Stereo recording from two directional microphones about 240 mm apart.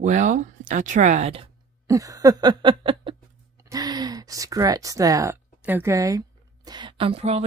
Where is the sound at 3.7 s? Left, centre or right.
Centre.